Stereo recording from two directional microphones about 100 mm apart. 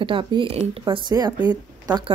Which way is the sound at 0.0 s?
55° right (ahead or behind).